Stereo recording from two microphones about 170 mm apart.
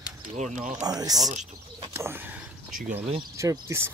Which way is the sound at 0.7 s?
20° right (ahead or behind).